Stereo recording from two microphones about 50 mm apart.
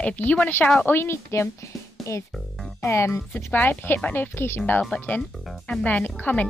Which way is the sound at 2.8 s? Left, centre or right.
Left.